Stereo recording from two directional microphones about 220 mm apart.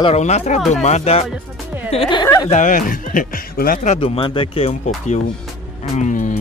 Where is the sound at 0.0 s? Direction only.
30° left (ahead or behind).